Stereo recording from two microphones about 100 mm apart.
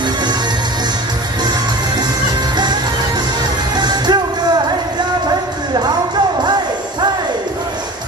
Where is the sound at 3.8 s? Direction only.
45° right (ahead or behind).